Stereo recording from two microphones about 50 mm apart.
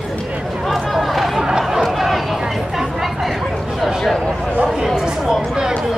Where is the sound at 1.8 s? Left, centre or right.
Centre.